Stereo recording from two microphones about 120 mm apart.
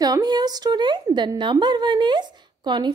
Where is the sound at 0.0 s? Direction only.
35° right (ahead or behind).